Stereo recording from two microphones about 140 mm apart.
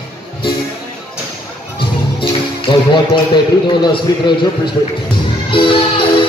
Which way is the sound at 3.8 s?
35° left (ahead or behind).